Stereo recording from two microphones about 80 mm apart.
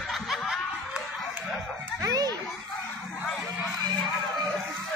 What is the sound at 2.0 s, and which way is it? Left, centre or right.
Children playing, right.